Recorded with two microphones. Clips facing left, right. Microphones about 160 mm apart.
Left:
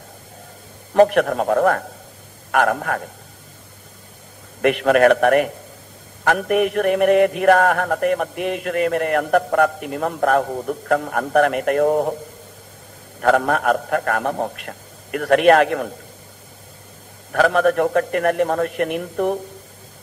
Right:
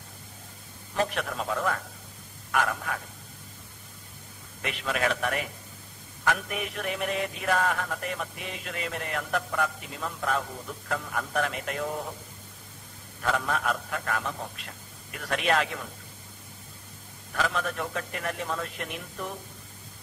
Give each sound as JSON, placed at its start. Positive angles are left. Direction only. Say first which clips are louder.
{"t": 0.9, "sound": "mantra", "louder": "left 15 dB", "side_deg": 60}
{"t": 4.6, "sound": "mantra", "louder": "left 16 dB", "side_deg": 60}
{"t": 13.2, "sound": "mantra", "louder": "left 11 dB", "side_deg": 55}
{"t": 17.3, "sound": "mantra", "louder": "left 14 dB", "side_deg": 60}